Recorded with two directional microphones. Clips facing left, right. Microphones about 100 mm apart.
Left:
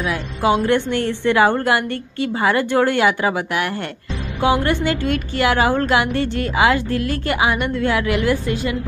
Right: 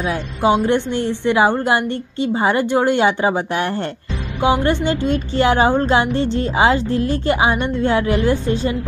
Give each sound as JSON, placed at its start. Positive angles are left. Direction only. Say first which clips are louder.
{"t": 0.0, "sound": "a woman's voice", "louder": "right 2 dB", "side_deg": -25}